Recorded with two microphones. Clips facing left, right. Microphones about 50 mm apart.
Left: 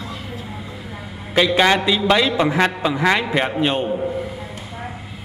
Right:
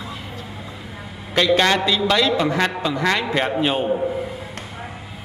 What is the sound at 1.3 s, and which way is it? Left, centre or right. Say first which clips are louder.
A man's voice: left 1 dB; centre.